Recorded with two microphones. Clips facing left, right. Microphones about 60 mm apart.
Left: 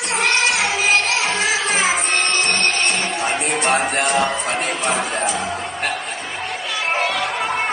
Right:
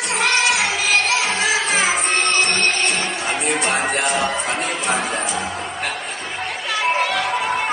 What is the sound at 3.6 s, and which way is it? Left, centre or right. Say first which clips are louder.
Music: left 4 dB; left.